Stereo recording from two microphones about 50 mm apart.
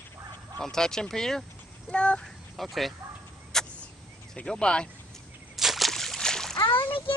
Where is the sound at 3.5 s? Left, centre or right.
Centre.